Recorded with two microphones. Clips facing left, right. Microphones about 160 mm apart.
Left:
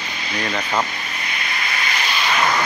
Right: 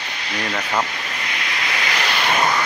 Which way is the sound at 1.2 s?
90° right.